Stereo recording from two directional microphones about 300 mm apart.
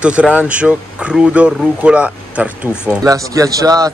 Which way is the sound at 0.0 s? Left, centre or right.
Centre.